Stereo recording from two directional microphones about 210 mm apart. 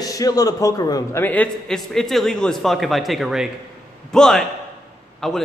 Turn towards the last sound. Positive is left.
turn(degrees=0)  # may be behind; listen again after turning